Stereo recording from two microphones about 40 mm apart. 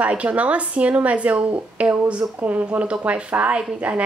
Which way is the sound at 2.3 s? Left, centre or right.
Right.